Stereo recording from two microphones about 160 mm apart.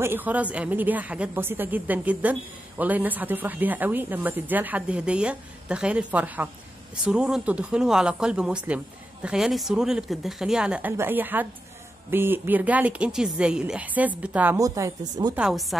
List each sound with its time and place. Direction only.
0.0 s speech: 10° right (ahead or behind)
14.6 s speech: 20° right (ahead or behind)
15.3 s speech: 5° right (ahead or behind)